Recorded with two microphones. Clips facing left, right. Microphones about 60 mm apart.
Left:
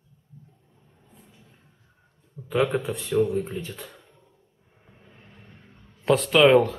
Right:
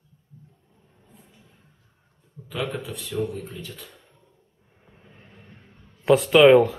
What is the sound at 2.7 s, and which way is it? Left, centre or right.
Speech, left.